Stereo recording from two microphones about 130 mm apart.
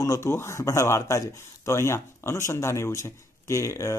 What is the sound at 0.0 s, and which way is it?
Speech, 20° left (ahead or behind).